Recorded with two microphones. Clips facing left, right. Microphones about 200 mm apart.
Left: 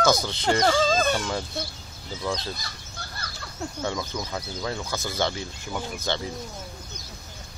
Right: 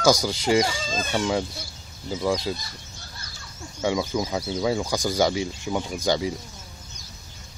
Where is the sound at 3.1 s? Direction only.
80° left.